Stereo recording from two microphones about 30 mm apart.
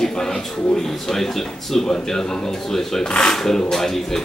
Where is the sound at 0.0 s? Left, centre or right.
Centre.